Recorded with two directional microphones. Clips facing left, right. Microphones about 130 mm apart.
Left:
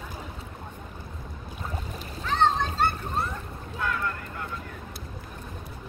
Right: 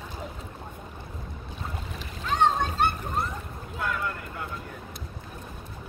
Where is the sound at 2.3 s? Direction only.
10° right (ahead or behind).